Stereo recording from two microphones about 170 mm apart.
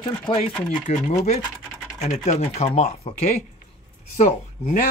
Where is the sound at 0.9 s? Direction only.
40° left (ahead or behind).